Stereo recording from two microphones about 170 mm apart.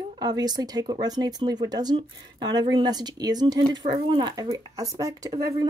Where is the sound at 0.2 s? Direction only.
25° right (ahead or behind).